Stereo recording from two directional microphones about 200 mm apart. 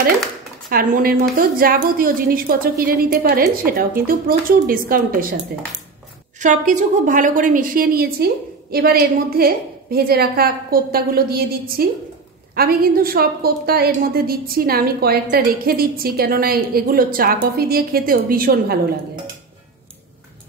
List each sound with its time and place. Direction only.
0.7 s a woman's voice: 45° right (ahead or behind)
6.4 s a woman's voice: 40° right (ahead or behind)